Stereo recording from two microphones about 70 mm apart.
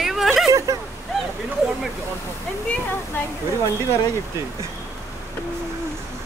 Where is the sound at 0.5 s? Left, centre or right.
Right.